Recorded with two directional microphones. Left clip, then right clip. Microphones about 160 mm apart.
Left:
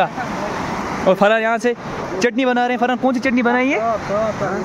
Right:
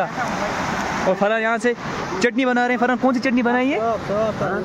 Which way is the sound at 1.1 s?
30° left (ahead or behind).